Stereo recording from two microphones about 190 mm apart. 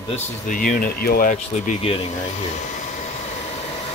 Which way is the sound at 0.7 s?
50° left (ahead or behind).